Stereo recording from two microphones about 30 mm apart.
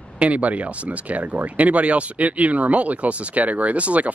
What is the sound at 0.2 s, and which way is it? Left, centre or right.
Speech, right.